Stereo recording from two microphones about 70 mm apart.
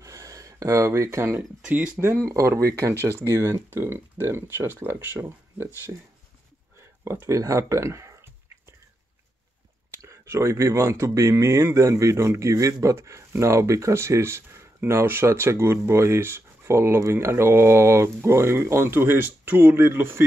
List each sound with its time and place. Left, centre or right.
0.0 s speech: right
2.2 s speech: right
7.1 s speech: right
10.0 s speech: right